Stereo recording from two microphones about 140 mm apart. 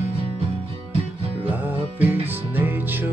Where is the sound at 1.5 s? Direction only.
15° right (ahead or behind).